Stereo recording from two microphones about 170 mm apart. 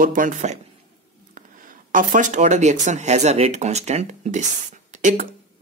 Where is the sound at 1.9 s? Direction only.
50° right (ahead or behind).